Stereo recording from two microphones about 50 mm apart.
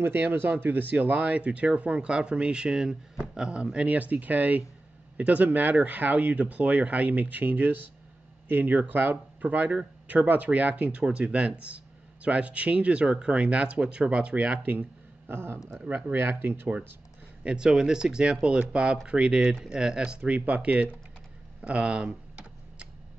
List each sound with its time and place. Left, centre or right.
0.0 s speech: right
14.7 s speech: right
17.4 s speech: centre
21.5 s computer keyboard: right